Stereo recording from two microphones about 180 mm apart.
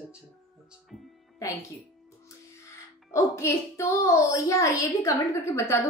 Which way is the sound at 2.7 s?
15° left (ahead or behind).